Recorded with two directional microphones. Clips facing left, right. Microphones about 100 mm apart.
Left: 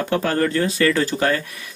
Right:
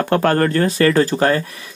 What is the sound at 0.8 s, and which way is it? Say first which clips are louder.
Speech: right 5 dB; 40° right (ahead or behind).